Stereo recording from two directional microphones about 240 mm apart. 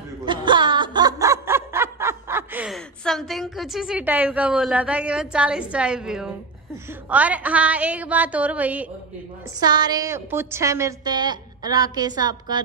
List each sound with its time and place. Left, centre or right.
0.2 s a woman's voice: centre
9.6 s a woman's voice: centre